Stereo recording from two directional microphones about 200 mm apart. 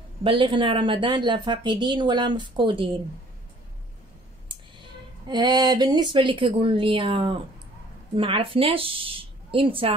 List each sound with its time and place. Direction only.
0.2 s speech: 25° right (ahead or behind)
5.3 s speech: 20° right (ahead or behind)